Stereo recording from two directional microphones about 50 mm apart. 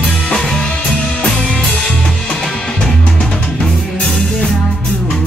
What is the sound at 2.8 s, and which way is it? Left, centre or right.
Music, centre.